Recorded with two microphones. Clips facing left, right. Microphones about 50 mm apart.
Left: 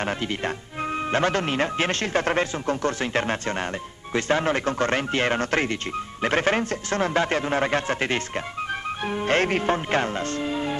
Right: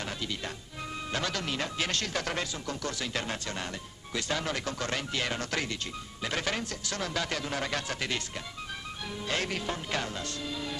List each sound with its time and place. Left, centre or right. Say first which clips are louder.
0.0 s speech: left 9 dB; left